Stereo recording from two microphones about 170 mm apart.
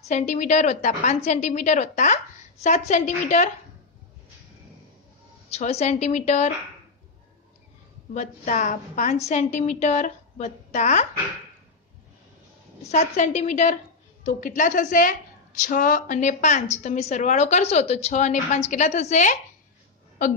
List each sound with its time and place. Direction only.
0.1 s a woman's voice: 45° left (ahead or behind)
5.5 s a woman's voice: 40° left (ahead or behind)
8.1 s a woman's voice: 45° left (ahead or behind)
12.9 s a woman's voice: 45° left (ahead or behind)